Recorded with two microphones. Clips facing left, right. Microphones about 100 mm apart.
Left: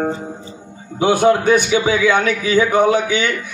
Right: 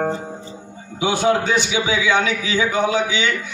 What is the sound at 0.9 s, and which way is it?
A man's voice, 50° left (ahead or behind).